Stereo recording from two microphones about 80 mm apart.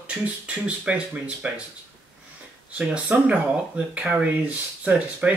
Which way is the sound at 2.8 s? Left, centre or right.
Centre.